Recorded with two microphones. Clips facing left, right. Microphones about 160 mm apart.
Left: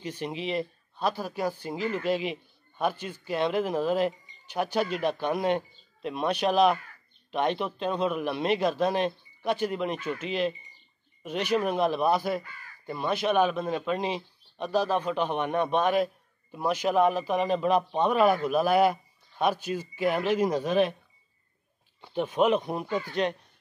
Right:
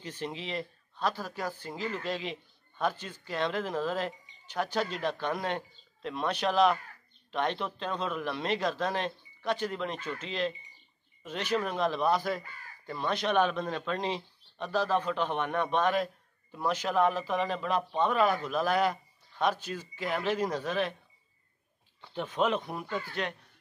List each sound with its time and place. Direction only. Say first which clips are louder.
0.0 s a man's voice: left 5 dB; 15° left (ahead or behind)
22.0 s a man's voice: left 5 dB; 15° left (ahead or behind)